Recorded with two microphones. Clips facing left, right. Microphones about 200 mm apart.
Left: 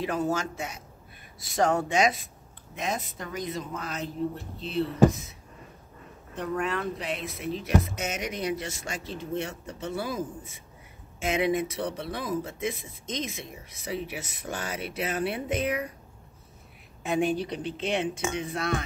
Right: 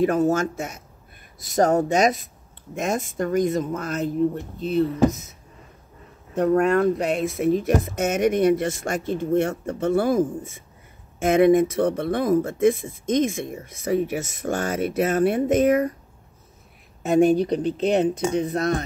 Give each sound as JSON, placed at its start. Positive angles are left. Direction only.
{"t": 0.0, "sound": "speech", "side_deg": -45}
{"t": 6.3, "sound": "speech", "side_deg": -45}
{"t": 17.0, "sound": "speech", "side_deg": -45}